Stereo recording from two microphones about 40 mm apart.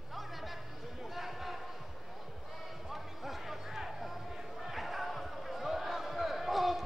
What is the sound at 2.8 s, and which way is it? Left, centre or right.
Music, centre.